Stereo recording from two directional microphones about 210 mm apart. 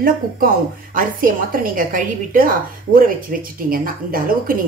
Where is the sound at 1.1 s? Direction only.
40° right (ahead or behind).